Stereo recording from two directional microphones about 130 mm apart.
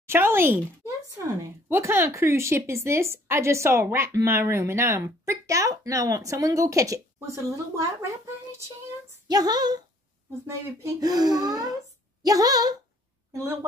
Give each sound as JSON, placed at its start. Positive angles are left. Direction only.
{"t": 0.1, "sound": "a woman's voice", "side_deg": -20}
{"t": 13.3, "sound": "a woman's voice", "side_deg": -20}